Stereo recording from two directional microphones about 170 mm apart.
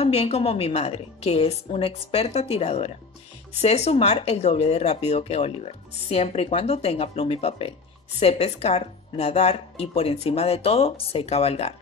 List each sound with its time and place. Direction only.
0.0 s speech: 40° left (ahead or behind)